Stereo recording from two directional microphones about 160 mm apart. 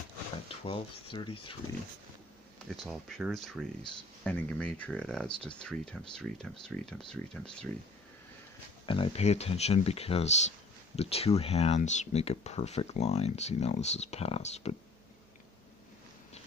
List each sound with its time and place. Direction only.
0.7 s speech: 30° left (ahead or behind)
2.7 s speech: centre (ahead or behind)
8.8 s speech: 35° left (ahead or behind)